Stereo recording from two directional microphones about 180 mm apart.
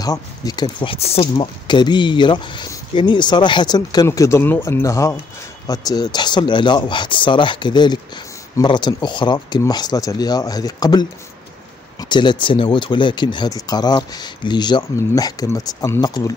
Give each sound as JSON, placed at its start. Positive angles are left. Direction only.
{"t": 0.0, "sound": "speech", "side_deg": 20}